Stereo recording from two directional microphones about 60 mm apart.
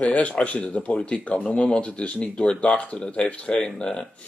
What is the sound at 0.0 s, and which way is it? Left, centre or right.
Speech, left.